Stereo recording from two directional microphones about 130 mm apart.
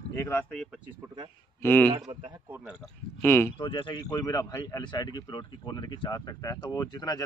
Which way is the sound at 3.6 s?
40° left (ahead or behind).